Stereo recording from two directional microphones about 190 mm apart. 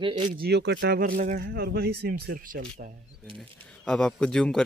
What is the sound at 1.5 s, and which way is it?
Speech, 55° right (ahead or behind).